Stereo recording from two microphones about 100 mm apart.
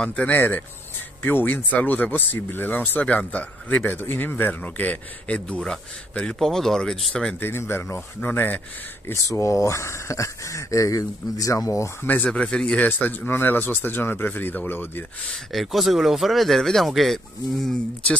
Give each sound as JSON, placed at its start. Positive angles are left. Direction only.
{"t": 0.0, "sound": "speech", "side_deg": 15}
{"t": 7.3, "sound": "speech", "side_deg": 20}
{"t": 9.0, "sound": "speech", "side_deg": 30}
{"t": 12.1, "sound": "speech", "side_deg": 10}
{"t": 15.3, "sound": "speech", "side_deg": 0}